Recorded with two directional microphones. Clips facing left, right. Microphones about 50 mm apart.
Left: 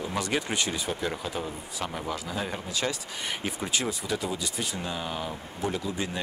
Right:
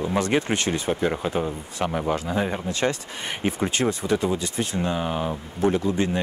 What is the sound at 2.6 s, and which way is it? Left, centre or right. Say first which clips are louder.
Speech: right 6 dB; right.